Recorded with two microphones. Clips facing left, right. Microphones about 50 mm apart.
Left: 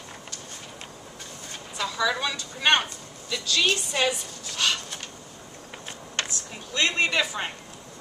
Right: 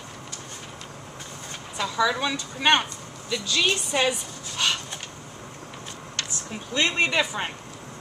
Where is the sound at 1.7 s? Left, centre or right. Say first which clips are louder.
Right 2 dB; centre.